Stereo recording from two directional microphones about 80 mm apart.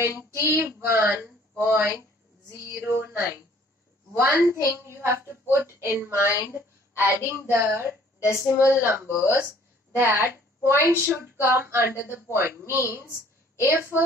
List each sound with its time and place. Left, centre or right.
0.2 s a woman's voice: right
8.3 s speech: left
8.8 s a woman's voice: right